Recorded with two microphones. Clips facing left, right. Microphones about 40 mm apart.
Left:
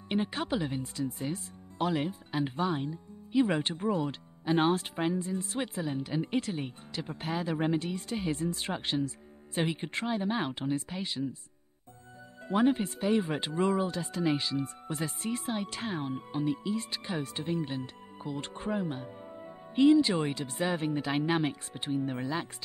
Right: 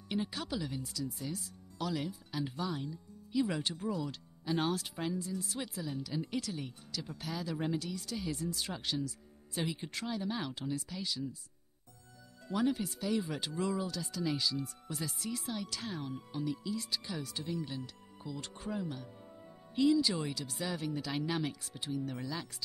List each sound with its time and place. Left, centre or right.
0.1 s speech: left
12.4 s speech: left